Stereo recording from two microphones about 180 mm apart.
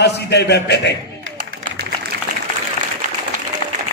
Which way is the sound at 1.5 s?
50° right (ahead or behind).